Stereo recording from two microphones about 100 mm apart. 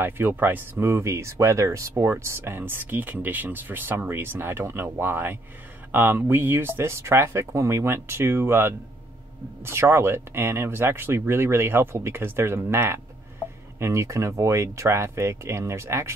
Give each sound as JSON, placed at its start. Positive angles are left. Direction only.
{"t": 0.0, "sound": "speech", "side_deg": -20}